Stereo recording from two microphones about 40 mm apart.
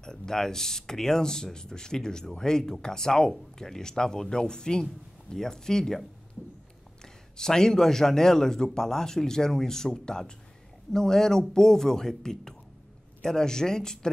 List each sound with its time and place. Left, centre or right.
0.0 s speech: centre
7.3 s speech: centre